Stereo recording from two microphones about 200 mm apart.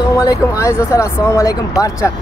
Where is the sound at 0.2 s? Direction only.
15° left (ahead or behind).